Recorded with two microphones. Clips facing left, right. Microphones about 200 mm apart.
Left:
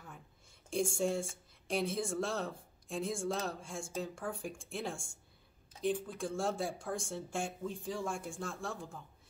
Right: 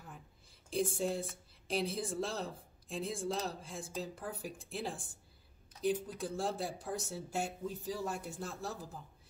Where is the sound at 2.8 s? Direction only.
35° right (ahead or behind).